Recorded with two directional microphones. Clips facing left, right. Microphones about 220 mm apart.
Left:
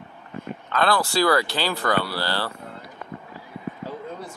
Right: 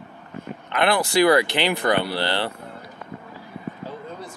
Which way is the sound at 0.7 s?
20° right (ahead or behind).